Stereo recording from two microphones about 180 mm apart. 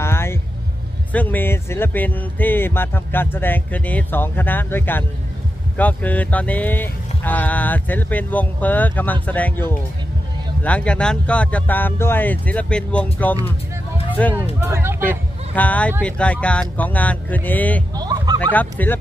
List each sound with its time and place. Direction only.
0.0 s music: 15° left (ahead or behind)
1.1 s speech: 10° left (ahead or behind)
14.6 s speech: 15° right (ahead or behind)
15.5 s speech: 10° left (ahead or behind)
17.9 s fowl: 20° right (ahead or behind)
18.5 s speech: 10° left (ahead or behind)